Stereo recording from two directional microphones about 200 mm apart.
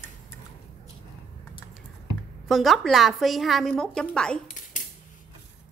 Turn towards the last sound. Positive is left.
turn(degrees=40)  # may be behind; listen again after turning